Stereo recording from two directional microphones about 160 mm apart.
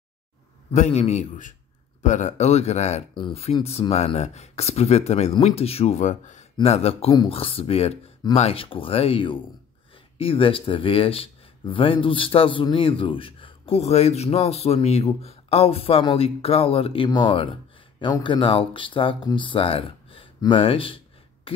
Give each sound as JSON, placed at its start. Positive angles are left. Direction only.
{"t": 0.7, "sound": "speech", "side_deg": 45}